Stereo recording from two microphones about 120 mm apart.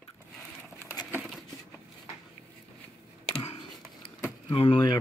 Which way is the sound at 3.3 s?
60° left (ahead or behind).